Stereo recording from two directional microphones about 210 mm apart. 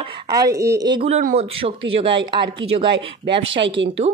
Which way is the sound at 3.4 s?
65° right (ahead or behind).